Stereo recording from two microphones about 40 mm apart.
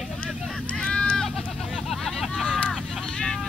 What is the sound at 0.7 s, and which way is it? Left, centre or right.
Run, left.